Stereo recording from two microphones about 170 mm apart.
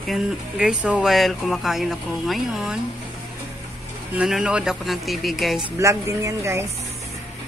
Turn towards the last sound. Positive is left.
turn(degrees=-15)  # may be behind; listen again after turning